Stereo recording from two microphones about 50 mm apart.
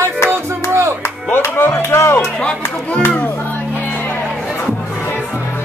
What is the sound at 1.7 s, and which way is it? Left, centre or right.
Music, left.